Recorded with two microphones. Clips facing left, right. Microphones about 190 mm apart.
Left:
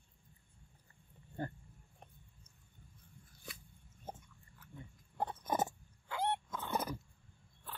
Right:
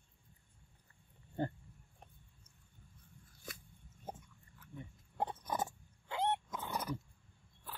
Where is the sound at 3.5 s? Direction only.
45° right (ahead or behind).